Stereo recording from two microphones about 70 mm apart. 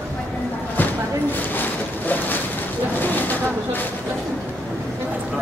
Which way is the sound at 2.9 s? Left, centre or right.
Left.